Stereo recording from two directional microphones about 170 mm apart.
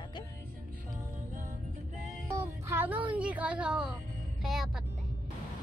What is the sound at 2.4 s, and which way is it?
Speech, 15° right (ahead or behind).